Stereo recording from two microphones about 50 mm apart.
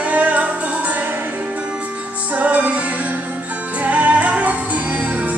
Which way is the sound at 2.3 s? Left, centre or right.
Right.